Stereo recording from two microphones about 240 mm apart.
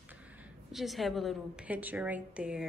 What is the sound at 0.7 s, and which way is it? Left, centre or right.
A woman's voice, centre.